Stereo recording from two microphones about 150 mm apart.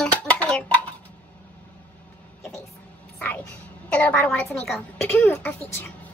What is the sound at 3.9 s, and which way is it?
A child's voice, 10° left (ahead or behind).